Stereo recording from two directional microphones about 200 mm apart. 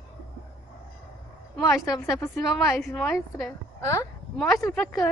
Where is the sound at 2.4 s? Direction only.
Centre (ahead or behind).